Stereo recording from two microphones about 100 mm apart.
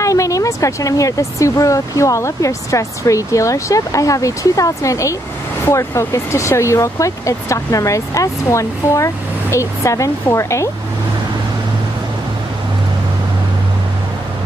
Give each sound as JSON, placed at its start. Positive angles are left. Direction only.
{"t": 0.0, "sound": "speech", "side_deg": 30}